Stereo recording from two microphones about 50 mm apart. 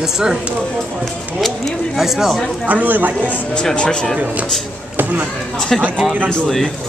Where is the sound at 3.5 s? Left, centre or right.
Left.